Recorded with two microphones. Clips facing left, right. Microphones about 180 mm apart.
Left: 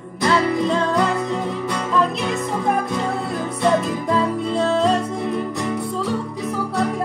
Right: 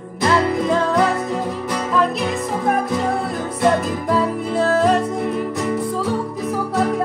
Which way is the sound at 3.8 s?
5° right (ahead or behind).